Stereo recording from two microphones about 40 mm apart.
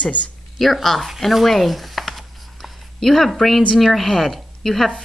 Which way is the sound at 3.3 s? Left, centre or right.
Centre.